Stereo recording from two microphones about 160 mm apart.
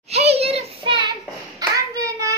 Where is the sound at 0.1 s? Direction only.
40° right (ahead or behind).